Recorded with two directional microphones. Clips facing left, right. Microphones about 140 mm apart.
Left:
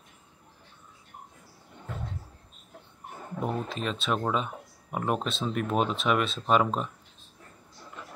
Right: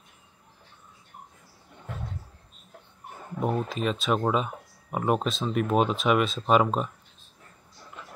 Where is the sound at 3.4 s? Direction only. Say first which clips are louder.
Right 4 dB; 5° right (ahead or behind).